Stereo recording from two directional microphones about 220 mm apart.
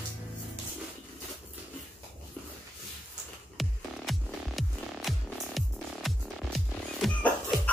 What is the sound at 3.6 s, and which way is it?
Music, centre (ahead or behind).